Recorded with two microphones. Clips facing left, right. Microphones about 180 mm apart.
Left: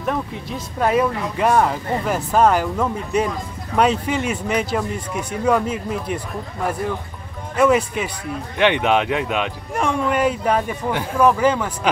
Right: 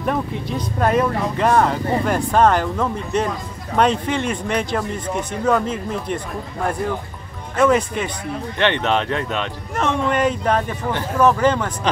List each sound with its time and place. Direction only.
0.0 s speech: centre (ahead or behind)